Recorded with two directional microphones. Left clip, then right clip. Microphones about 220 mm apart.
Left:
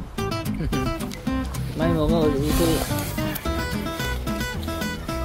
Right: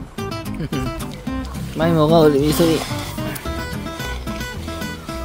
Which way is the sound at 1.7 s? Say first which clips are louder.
Right 8 dB; 45° right (ahead or behind).